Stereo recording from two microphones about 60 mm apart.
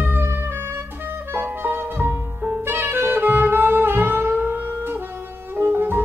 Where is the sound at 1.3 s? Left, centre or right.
Right.